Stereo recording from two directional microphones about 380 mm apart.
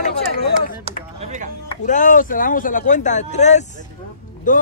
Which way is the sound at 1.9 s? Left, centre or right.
Centre.